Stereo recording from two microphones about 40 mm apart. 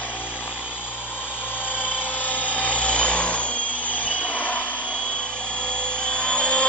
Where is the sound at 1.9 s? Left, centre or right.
Left.